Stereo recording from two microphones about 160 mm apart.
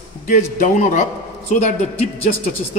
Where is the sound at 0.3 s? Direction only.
50° left (ahead or behind).